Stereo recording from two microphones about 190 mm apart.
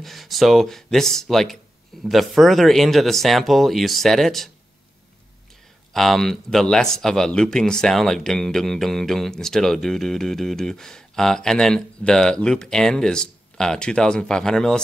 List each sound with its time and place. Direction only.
0.0 s speech: centre (ahead or behind)
5.9 s speech: centre (ahead or behind)